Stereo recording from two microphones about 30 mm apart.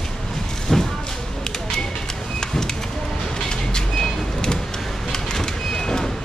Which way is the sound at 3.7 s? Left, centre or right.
Left.